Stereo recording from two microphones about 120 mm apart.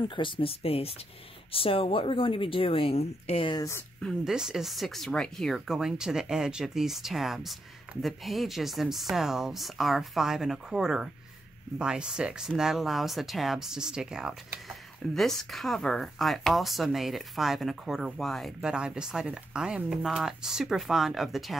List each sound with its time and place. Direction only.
0.1 s a woman's voice: 45° left (ahead or behind)
3.5 s speech: 25° left (ahead or behind)
4.2 s speech: 5° right (ahead or behind)